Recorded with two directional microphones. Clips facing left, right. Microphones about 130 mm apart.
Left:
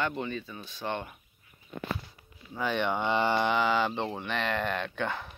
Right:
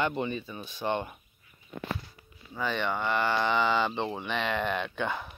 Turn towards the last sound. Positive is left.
turn(degrees=-5)  # may be behind; listen again after turning